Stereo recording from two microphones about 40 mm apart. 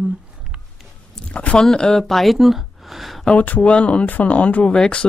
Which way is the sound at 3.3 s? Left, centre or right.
Left.